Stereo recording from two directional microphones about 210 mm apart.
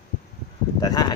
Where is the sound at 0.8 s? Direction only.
20° left (ahead or behind).